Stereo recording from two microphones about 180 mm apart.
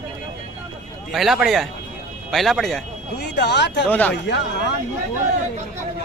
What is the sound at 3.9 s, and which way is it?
Speech, 10° left (ahead or behind).